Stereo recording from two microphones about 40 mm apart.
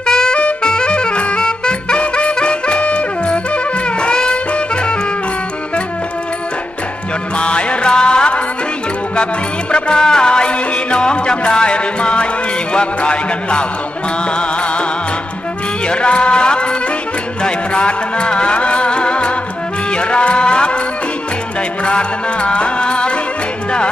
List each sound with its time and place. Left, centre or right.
0.0 s music: centre
7.3 s music: left
15.9 s music: left
21.8 s music: left